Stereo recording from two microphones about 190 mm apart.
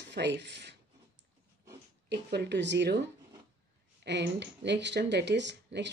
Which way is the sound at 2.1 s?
60° right (ahead or behind).